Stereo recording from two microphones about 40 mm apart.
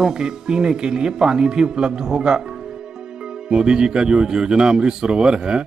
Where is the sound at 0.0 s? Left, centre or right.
Centre.